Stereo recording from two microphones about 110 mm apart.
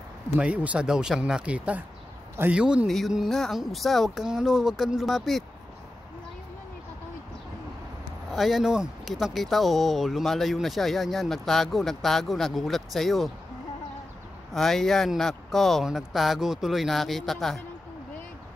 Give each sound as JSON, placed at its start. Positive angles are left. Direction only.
{"t": 0.4, "sound": "speech", "side_deg": -10}
{"t": 8.3, "sound": "speech", "side_deg": 0}
{"t": 14.5, "sound": "speech", "side_deg": 5}